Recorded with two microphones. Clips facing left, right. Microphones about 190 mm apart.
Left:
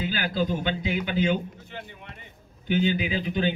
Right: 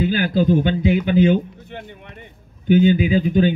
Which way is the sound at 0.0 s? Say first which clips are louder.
Right 9 dB; 45° right (ahead or behind).